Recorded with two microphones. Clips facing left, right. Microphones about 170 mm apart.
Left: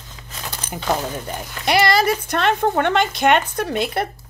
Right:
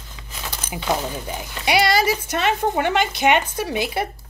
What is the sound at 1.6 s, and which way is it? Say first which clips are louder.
Speech: left 1 dB; 60° left (ahead or behind).